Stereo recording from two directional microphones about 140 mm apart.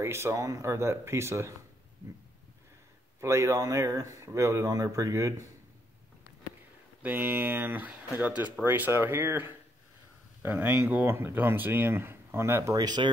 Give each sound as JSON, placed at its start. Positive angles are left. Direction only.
{"t": 0.0, "sound": "speech", "side_deg": -20}
{"t": 3.2, "sound": "speech", "side_deg": -20}
{"t": 7.0, "sound": "speech", "side_deg": -15}